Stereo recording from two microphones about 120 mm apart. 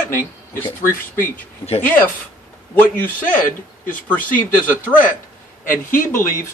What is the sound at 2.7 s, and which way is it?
A man's voice, 15° left (ahead or behind).